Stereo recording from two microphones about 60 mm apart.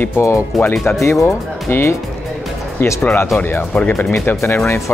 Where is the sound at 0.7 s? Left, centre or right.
Centre.